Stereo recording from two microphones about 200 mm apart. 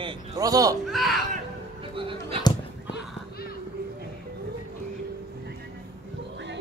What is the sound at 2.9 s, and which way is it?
Clip-clop, 50° left (ahead or behind).